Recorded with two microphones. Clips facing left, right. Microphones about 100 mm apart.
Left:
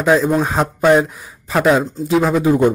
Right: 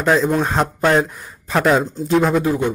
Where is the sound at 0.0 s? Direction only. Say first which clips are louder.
Left 2 dB; 5° left (ahead or behind).